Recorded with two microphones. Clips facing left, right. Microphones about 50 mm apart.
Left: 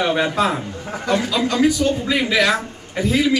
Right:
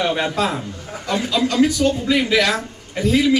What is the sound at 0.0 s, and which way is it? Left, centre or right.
A man's voice, centre.